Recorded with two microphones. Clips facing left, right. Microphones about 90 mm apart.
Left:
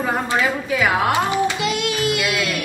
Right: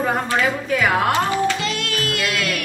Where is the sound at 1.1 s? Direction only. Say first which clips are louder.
Even; 15° left (ahead or behind).